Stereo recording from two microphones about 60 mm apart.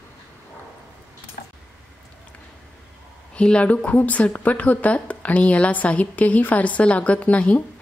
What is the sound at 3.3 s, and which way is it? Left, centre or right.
A woman's voice, centre.